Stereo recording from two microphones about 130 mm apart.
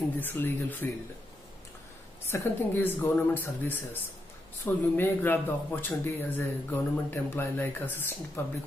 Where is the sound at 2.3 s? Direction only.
20° left (ahead or behind).